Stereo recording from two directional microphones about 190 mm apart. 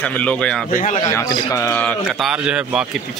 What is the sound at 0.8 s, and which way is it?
Speech, 40° left (ahead or behind).